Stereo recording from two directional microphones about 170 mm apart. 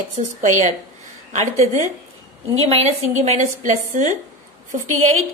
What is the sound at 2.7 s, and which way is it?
A woman's voice, 35° right (ahead or behind).